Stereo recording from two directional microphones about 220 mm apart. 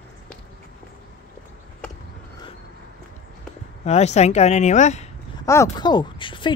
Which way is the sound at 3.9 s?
30° left (ahead or behind).